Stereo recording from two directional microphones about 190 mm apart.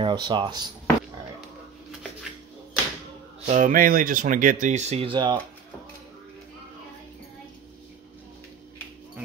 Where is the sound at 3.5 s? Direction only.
45° right (ahead or behind); by 5.3 s 25° right (ahead or behind).